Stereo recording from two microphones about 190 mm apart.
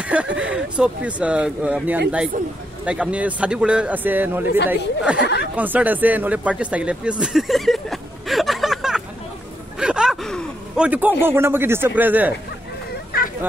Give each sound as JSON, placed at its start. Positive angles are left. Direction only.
{"t": 0.0, "sound": "speech", "side_deg": -5}
{"t": 5.2, "sound": "speech", "side_deg": 65}
{"t": 5.6, "sound": "speech", "side_deg": -10}
{"t": 9.8, "sound": "gasp", "side_deg": -5}
{"t": 10.9, "sound": "speech", "side_deg": -10}